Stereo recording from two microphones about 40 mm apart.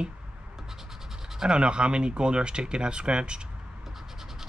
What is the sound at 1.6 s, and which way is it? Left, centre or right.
Speech, right.